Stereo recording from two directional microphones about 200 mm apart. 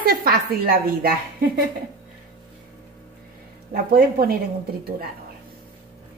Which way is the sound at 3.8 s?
50° right (ahead or behind).